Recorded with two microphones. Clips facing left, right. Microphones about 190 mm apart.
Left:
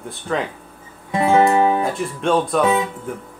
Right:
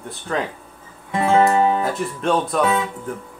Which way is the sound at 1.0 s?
20° left (ahead or behind).